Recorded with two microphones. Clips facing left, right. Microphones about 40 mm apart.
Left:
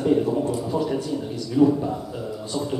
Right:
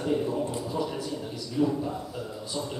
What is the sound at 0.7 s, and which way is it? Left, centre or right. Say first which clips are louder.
Speech: left 6 dB; centre.